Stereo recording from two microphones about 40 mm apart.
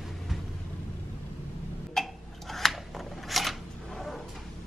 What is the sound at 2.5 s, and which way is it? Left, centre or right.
Shuffling cards, centre.